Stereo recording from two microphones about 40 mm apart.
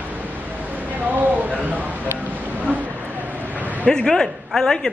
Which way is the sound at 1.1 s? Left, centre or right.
Right.